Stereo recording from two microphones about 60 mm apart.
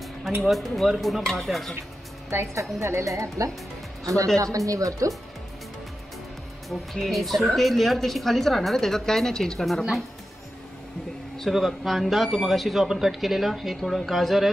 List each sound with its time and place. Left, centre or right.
0.4 s speech: centre
2.8 s speech: right
6.7 s speech: centre
11.5 s speech: centre